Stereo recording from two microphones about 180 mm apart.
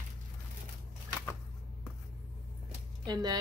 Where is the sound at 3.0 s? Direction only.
25° right (ahead or behind).